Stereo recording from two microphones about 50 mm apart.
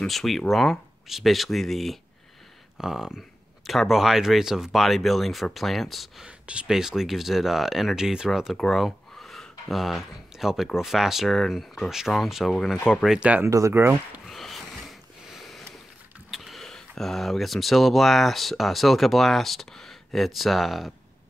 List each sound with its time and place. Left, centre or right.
0.0 s speech: centre
2.8 s speech: centre
6.2 s speech: right
6.7 s speech: centre
8.6 s speech: centre
12.1 s speech: centre
12.6 s speech: centre
13.5 s speech: right
14.2 s a sound: centre
15.3 s sniff: centre
16.3 s a sound: centre
16.6 s speech: centre